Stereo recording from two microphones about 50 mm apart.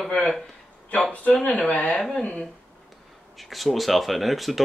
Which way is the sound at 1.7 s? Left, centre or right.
Left.